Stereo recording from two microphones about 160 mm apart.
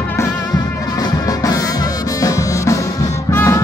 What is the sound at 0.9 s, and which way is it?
Music, 20° left (ahead or behind).